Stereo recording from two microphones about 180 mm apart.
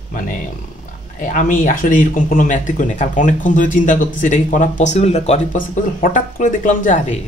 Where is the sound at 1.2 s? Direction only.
45° left (ahead or behind).